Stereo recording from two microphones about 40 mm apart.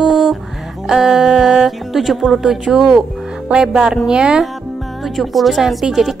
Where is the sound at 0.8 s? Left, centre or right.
Centre.